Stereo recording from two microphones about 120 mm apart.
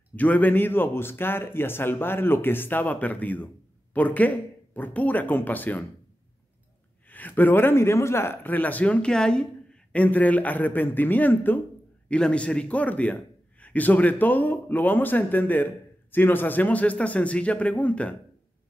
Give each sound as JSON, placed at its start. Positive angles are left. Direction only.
{"t": 0.1, "sound": "a man's voice", "side_deg": 15}
{"t": 7.1, "sound": "a man's voice", "side_deg": 15}